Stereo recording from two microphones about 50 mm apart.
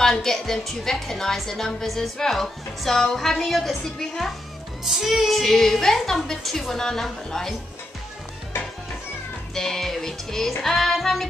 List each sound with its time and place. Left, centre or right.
0.0 s a woman's voice: centre
8.5 s music: left
9.5 s a woman's voice: centre